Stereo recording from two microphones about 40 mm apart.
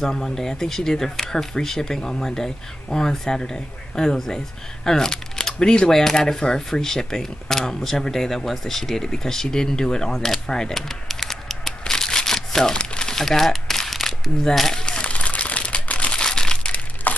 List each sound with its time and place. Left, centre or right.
0.0 s speech: centre
10.1 s speech: centre
10.7 s a sound: centre
12.7 s crumpling: left
13.1 s crumpling: centre
14.9 s crumpling: left
16.2 s a sound: centre